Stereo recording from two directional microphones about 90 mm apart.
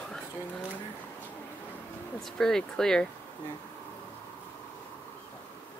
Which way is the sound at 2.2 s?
5° left (ahead or behind).